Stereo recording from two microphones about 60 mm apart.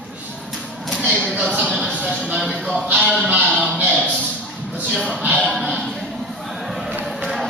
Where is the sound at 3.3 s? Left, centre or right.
Right.